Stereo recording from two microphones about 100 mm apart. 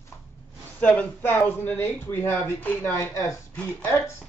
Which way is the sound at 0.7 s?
15° left (ahead or behind).